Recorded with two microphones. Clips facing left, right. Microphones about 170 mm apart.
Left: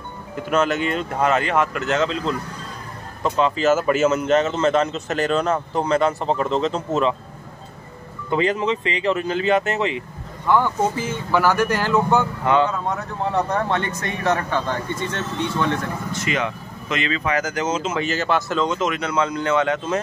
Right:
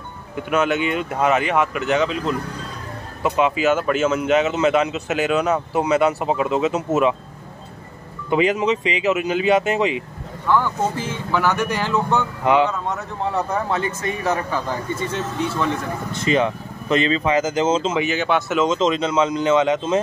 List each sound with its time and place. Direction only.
0.4 s speech: centre (ahead or behind)
3.2 s speech: 10° right (ahead or behind)
3.6 s speech: 5° left (ahead or behind)
8.3 s speech: 15° right (ahead or behind)
11.0 s speech: centre (ahead or behind)
12.4 s speech: 20° right (ahead or behind)
13.5 s speech: 5° right (ahead or behind)
16.3 s speech: 30° right (ahead or behind)
17.9 s speech: centre (ahead or behind)
18.6 s speech: 25° right (ahead or behind)